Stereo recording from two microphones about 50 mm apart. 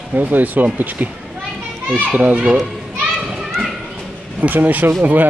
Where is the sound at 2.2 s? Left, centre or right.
Right.